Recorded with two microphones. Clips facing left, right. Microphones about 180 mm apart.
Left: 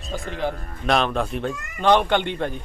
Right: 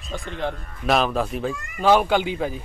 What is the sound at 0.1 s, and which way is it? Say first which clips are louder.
Speech: left 1 dB; centre (ahead or behind).